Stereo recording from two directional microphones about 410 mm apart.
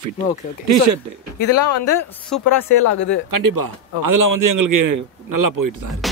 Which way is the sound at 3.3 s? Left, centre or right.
Right.